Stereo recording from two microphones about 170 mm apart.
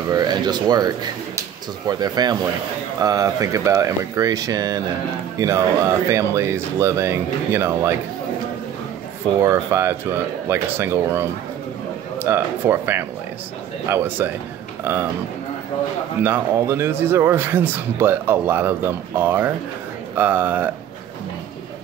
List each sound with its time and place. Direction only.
0.1 s a man's voice: 25° right (ahead or behind)
9.4 s a man's voice: 15° right (ahead or behind)
16.2 s a man's voice: 15° right (ahead or behind)